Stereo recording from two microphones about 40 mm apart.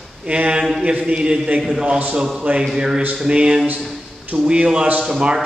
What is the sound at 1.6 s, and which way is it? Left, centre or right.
Speech, centre.